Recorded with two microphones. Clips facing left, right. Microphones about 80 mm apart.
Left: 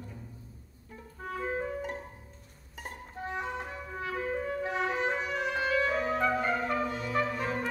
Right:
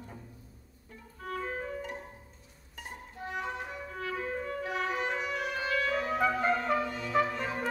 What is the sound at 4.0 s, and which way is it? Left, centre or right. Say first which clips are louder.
Clarinet: left 2 dB; centre.